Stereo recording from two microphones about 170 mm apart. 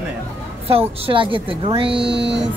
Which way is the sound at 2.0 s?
90° right.